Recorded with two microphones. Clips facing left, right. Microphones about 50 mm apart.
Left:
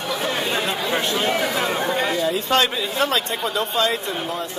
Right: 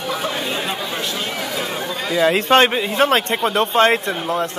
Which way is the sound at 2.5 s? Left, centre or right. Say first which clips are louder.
Right 4 dB; right.